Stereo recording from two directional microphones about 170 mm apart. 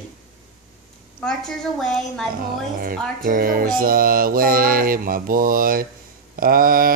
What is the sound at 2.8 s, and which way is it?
Music, 55° right (ahead or behind).